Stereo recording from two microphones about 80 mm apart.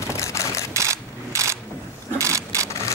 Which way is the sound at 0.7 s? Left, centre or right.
Right.